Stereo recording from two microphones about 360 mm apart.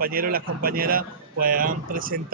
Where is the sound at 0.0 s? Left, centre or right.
Right.